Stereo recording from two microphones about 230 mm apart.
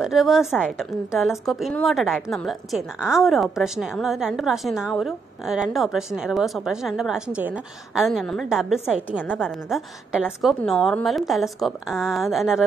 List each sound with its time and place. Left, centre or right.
0.0 s a woman's voice: centre